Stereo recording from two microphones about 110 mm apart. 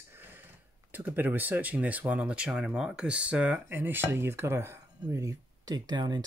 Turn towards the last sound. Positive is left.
turn(degrees=-40)  # may be behind; listen again after turning